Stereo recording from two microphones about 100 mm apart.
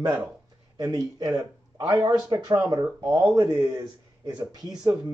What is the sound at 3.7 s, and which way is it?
Speech, 40° right (ahead or behind).